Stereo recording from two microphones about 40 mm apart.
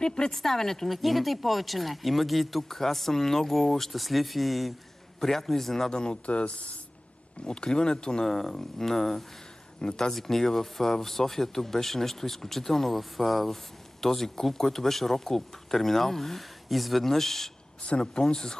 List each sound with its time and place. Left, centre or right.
0.0 s speech: centre
0.4 s speech: centre
5.9 s speech: left
6.2 s speech: left
7.4 s speech: left
8.3 s speech: centre
17.8 s speech: left